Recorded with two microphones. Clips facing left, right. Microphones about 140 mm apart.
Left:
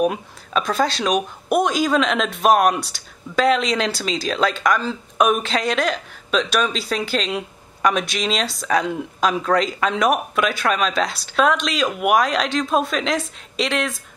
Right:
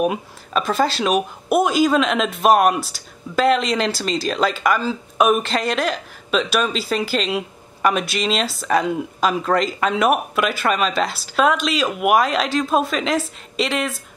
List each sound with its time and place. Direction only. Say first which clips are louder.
0.0 s speech: even; 5° right (ahead or behind)